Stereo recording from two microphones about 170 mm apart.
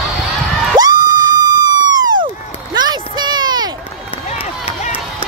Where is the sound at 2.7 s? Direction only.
25° right (ahead or behind).